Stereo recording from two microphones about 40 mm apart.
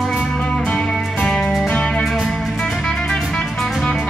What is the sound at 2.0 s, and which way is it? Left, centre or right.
Music, centre.